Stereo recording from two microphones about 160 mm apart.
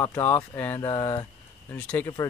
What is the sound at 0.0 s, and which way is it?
Speech, 15° left (ahead or behind).